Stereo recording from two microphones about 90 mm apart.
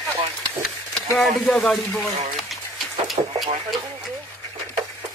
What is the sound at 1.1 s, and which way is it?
Speech, 5° left (ahead or behind).